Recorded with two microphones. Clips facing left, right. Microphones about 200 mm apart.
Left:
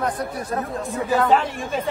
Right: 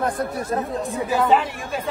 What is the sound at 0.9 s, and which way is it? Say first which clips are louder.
Speech: left 2 dB; 15° right (ahead or behind).